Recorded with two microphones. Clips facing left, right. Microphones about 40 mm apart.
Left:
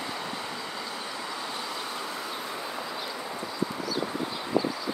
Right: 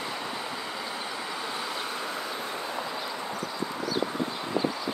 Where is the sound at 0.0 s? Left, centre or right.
Centre.